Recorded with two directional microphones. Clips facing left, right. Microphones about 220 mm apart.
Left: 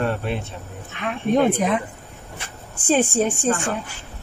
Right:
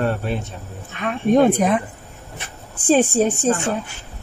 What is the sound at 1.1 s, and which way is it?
Speech, 45° right (ahead or behind).